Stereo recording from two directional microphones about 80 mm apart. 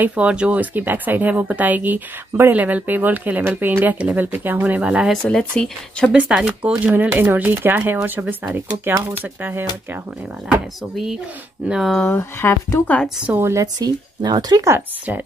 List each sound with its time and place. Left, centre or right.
0.0 s speech: centre
4.7 s speech: centre
5.4 s speech: centre
6.1 s speech: centre
11.6 s speech: centre
12.1 s speech: left
13.3 s a woman's voice: right
13.6 s speech: right